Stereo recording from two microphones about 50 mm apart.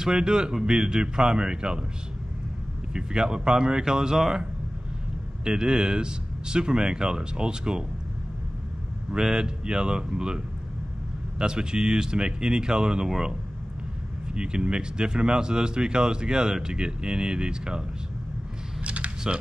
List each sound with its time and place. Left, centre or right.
0.0 s speech: centre
2.9 s speech: centre
9.1 s speech: centre
14.2 s speech: centre
18.9 s a sound: right